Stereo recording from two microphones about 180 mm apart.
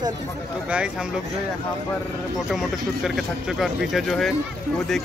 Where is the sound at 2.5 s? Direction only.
Centre (ahead or behind).